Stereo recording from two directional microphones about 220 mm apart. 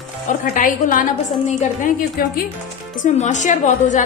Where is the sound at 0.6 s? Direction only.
40° left (ahead or behind).